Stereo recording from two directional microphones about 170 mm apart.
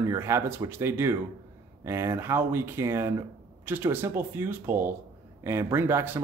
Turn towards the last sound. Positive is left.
turn(degrees=-15)  # may be behind; listen again after turning